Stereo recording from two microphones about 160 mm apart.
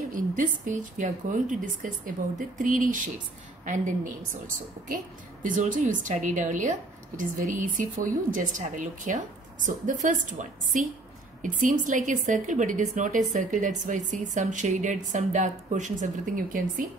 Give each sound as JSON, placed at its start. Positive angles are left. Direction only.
{"t": 0.1, "sound": "a woman's voice", "side_deg": -55}
{"t": 5.4, "sound": "a woman's voice", "side_deg": -55}